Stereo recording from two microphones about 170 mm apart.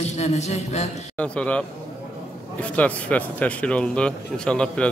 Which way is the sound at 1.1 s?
5° left (ahead or behind).